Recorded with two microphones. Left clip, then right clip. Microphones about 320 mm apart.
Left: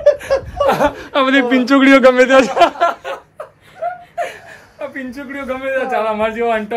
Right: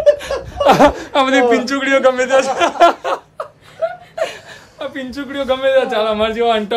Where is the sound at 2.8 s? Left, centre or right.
Right.